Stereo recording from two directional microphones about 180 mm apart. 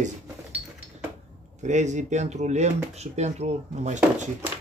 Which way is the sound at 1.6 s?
40° right (ahead or behind).